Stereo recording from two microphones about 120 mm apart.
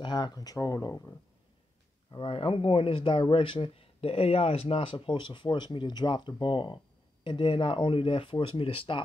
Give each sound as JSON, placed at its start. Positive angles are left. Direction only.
{"t": 0.0, "sound": "speech", "side_deg": 40}
{"t": 2.2, "sound": "speech", "side_deg": 50}